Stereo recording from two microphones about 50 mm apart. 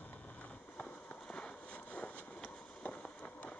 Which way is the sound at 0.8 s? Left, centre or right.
Centre.